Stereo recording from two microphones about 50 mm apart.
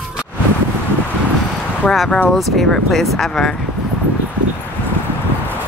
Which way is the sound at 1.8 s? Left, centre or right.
Centre.